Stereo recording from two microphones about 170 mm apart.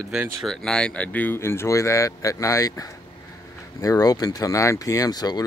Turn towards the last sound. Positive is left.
turn(degrees=25)  # may be behind; listen again after turning